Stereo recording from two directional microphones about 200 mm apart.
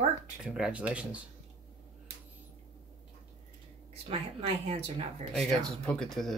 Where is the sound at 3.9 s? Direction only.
30° right (ahead or behind).